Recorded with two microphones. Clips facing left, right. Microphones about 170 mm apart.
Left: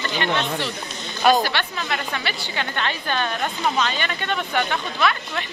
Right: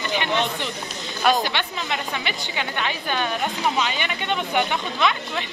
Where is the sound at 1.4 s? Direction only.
20° right (ahead or behind).